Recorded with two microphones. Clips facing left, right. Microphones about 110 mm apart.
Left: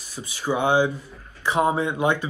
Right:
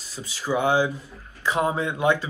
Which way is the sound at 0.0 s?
15° left (ahead or behind).